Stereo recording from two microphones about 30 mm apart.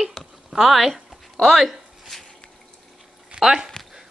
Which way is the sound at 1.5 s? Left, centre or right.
Centre.